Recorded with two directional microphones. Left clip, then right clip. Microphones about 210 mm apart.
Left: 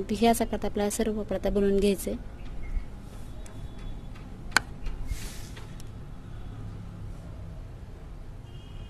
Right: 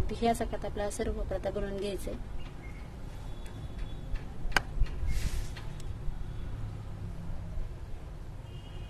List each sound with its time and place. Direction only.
0.0 s speech: 35° left (ahead or behind)